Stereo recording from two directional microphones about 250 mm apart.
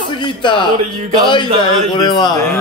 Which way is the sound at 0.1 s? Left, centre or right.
Centre.